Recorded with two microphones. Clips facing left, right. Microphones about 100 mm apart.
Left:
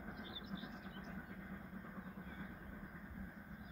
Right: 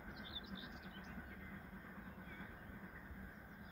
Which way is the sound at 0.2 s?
35° left (ahead or behind).